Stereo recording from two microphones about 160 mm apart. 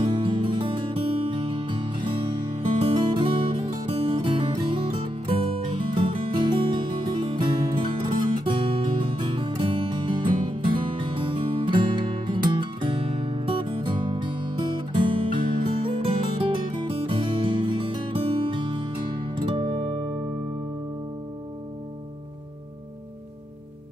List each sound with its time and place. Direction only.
0.0 s music: 30° right (ahead or behind)
19.6 s music: 45° right (ahead or behind)